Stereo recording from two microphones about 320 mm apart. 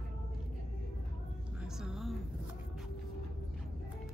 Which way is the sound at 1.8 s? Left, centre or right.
Centre.